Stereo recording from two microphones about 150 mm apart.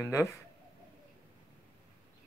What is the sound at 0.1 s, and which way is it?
Speech, 20° left (ahead or behind).